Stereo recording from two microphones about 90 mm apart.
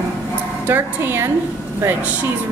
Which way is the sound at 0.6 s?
25° right (ahead or behind).